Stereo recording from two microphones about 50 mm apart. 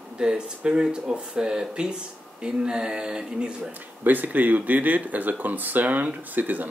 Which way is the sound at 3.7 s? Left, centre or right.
Right.